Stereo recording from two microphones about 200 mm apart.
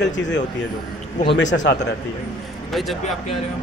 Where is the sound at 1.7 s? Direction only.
60° left (ahead or behind).